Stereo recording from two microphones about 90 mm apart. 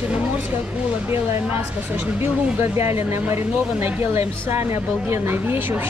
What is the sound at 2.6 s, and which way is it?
A woman's voice, 30° right (ahead or behind).